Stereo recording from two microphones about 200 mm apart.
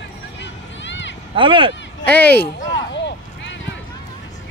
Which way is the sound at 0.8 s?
65° left (ahead or behind).